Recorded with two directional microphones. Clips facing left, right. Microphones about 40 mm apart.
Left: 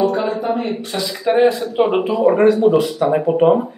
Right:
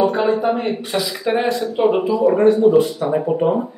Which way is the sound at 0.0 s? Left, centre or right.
Centre.